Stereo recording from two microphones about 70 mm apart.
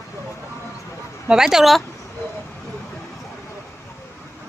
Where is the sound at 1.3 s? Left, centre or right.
Centre.